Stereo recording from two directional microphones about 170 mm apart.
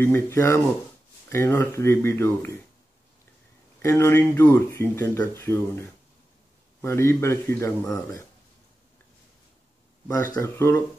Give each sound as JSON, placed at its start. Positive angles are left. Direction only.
{"t": 0.0, "sound": "speech", "side_deg": 15}
{"t": 3.8, "sound": "speech", "side_deg": 15}
{"t": 10.0, "sound": "speech", "side_deg": 10}